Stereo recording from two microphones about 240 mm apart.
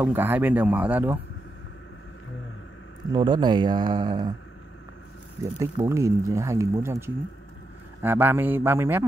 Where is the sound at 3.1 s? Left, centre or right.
Centre.